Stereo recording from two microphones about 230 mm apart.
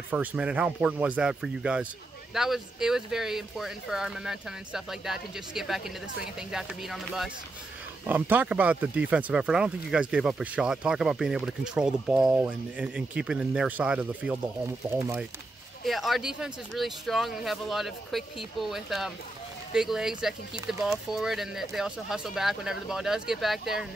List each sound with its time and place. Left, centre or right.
0.1 s speech: centre